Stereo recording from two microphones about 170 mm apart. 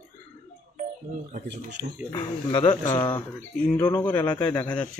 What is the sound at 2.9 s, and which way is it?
Speech, 25° left (ahead or behind).